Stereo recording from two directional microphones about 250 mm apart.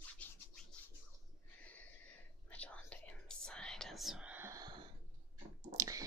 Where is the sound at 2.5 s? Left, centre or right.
Centre.